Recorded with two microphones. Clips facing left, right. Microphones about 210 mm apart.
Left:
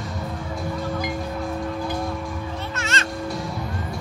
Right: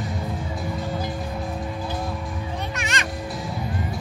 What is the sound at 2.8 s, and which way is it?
Music, 15° right (ahead or behind).